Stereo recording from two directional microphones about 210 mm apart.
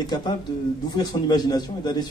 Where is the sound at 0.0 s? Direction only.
20° left (ahead or behind).